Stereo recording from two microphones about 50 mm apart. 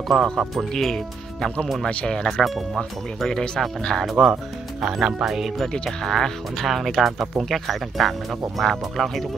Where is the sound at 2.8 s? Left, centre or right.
Centre.